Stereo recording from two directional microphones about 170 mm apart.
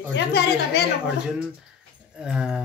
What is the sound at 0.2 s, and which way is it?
Speech, 90° left.